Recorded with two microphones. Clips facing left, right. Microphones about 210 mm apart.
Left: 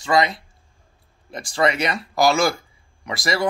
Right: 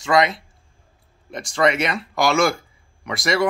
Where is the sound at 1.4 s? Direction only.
30° left (ahead or behind).